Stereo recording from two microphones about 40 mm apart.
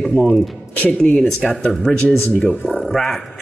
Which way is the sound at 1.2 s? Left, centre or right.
Centre.